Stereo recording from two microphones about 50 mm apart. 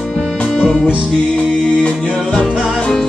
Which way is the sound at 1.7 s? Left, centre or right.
Centre.